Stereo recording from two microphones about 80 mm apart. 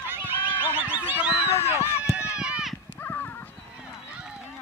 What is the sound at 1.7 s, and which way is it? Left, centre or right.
Run, left.